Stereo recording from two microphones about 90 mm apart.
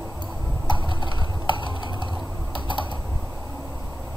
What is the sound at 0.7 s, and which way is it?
Typing, 60° left (ahead or behind).